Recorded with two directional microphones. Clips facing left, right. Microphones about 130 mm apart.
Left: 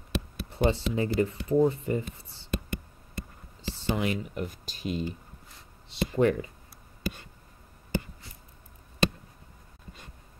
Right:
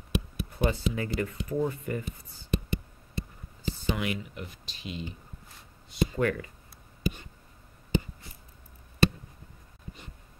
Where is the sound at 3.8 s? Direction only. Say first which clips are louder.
Left 3 dB; 30° left (ahead or behind).